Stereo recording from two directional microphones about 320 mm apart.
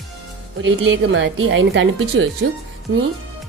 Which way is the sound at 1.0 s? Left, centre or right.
Right.